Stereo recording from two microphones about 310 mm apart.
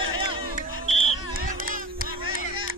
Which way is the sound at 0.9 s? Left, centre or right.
Right.